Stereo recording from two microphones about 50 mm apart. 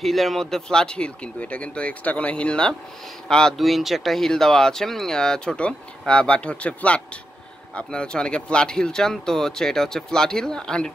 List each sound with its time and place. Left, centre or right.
0.0 s speech: centre
3.5 s speech: centre